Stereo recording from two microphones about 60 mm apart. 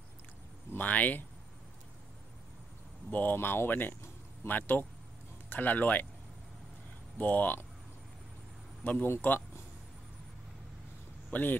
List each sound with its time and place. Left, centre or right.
0.7 s speech: left
3.1 s speech: left
3.3 s speech: left
7.2 s speech: left
8.8 s speech: left
11.3 s speech: left